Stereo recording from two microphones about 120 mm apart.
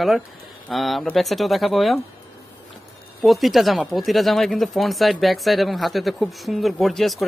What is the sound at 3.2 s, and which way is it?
Speech, centre (ahead or behind).